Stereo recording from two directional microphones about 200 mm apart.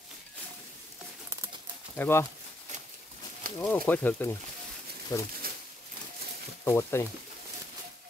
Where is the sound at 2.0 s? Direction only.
10° left (ahead or behind).